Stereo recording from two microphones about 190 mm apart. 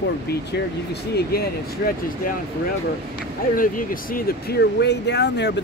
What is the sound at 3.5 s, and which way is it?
Speech, 45° left (ahead or behind).